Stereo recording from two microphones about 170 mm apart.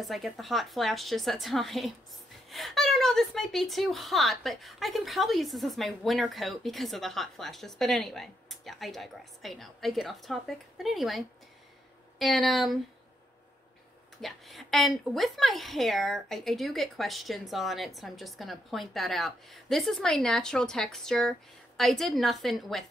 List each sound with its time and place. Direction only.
0.0 s a woman's voice: centre (ahead or behind)
14.2 s a woman's voice: centre (ahead or behind)